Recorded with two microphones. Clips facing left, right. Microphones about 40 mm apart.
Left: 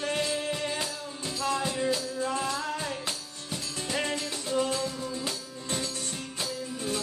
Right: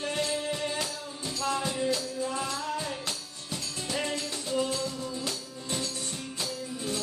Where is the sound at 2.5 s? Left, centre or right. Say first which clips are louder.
Left 1 dB; left.